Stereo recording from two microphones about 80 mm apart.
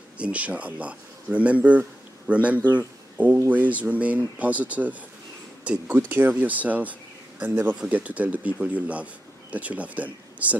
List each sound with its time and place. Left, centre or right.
0.2 s speech: centre